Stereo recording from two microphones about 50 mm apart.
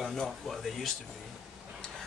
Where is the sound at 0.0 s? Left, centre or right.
Centre.